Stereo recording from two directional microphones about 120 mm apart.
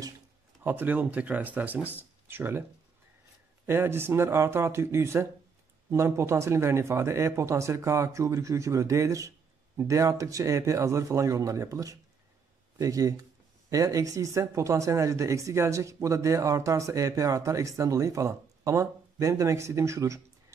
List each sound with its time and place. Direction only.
0.7 s speech: 15° right (ahead or behind)
3.6 s speech: 20° right (ahead or behind)